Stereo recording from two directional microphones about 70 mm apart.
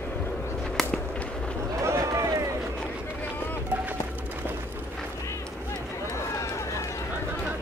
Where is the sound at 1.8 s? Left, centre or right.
Right.